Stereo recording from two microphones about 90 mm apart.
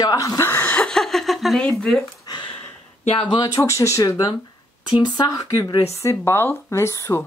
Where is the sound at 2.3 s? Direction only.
60° left (ahead or behind).